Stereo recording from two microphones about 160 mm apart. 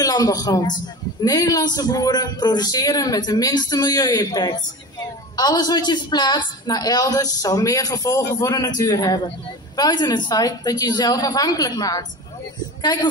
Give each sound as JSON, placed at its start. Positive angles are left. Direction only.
{"t": 0.0, "sound": "a man's voice", "side_deg": 25}